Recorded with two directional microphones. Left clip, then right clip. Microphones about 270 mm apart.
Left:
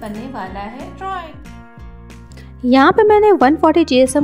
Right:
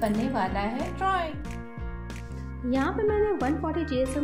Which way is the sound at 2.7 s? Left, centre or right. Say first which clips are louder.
Left 16 dB; left.